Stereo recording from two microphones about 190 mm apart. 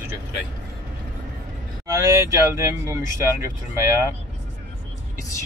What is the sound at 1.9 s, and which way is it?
Speech, 15° right (ahead or behind).